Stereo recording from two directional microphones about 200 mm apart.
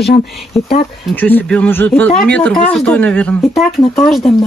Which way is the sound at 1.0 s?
5° left (ahead or behind).